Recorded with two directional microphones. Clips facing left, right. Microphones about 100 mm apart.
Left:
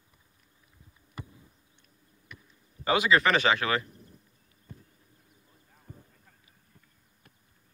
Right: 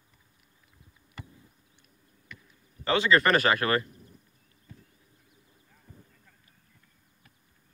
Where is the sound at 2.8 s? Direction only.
10° left (ahead or behind).